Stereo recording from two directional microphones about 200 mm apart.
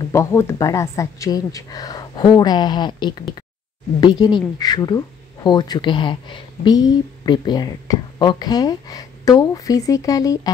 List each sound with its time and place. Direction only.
0.1 s speech: 15° left (ahead or behind)